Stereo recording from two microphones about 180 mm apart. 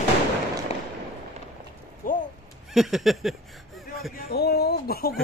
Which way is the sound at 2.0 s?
50° left (ahead or behind).